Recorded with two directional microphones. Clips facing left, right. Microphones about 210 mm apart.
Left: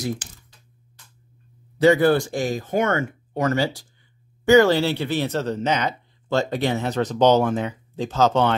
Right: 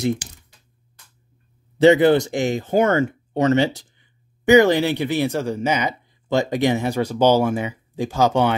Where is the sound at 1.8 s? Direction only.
20° right (ahead or behind).